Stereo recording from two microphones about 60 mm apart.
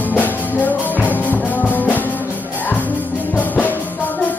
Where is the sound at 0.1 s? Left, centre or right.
Left.